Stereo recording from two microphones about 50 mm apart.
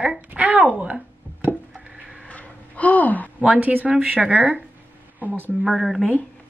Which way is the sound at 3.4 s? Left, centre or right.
Right.